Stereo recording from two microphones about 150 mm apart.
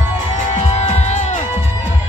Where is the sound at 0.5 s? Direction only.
45° left (ahead or behind).